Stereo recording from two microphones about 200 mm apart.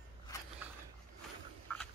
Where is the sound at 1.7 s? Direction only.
5° left (ahead or behind).